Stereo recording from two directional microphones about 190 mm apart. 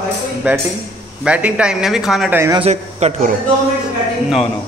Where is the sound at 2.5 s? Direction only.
35° right (ahead or behind).